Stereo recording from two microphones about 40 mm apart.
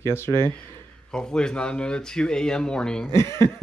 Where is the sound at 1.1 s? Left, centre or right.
Centre.